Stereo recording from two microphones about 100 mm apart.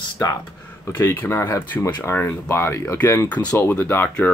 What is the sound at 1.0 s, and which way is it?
Speech, 20° left (ahead or behind).